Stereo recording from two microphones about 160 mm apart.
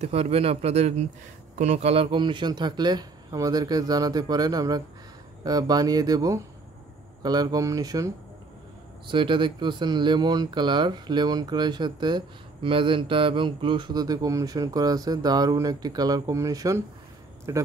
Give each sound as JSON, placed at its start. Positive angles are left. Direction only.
{"t": 0.0, "sound": "a man's voice", "side_deg": -40}
{"t": 9.1, "sound": "speech", "side_deg": -30}